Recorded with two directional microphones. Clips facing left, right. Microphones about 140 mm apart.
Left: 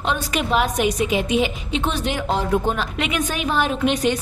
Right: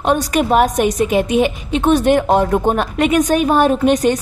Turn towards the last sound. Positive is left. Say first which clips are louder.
# right 6 dB
turn(degrees=-45)  # may be behind; listen again after turning